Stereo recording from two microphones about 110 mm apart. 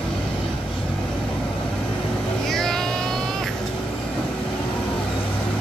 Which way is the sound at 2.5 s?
5° left (ahead or behind).